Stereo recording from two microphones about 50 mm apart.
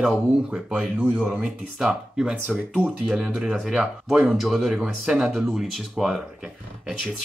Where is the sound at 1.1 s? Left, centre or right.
Centre.